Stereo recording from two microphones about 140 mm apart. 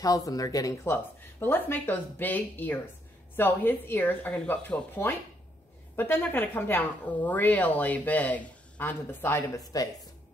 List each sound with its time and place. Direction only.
0.0 s speech: 25° left (ahead or behind)